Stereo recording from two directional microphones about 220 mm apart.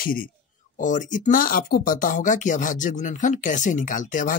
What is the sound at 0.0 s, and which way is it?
Speech, 40° left (ahead or behind).